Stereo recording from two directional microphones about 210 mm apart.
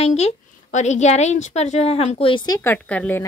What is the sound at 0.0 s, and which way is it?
A woman's voice, 30° left (ahead or behind).